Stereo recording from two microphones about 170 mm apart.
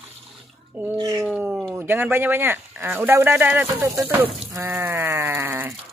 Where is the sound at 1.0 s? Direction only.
20° right (ahead or behind).